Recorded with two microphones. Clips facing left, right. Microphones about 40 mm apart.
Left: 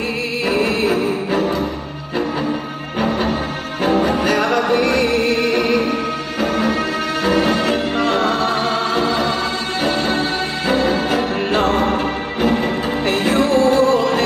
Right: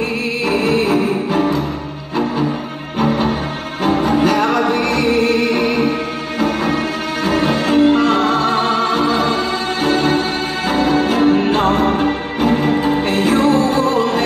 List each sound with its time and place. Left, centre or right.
4.0 s music: centre
7.6 s music: centre
8.3 s music: right
9.8 s music: centre